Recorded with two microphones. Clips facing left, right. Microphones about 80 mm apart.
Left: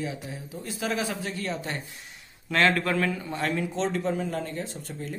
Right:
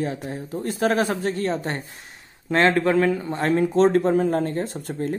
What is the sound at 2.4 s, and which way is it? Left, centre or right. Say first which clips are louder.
Speech: right 5 dB; right.